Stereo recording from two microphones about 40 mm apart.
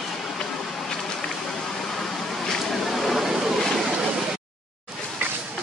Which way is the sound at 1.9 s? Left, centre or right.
Centre.